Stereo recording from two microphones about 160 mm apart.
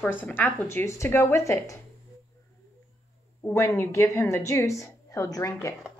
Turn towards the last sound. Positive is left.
turn(degrees=20)  # may be behind; listen again after turning